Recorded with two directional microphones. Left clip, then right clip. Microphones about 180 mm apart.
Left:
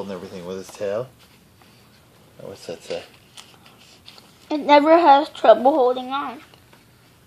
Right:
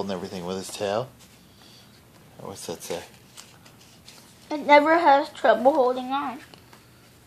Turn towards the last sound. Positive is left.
turn(degrees=25)  # may be behind; listen again after turning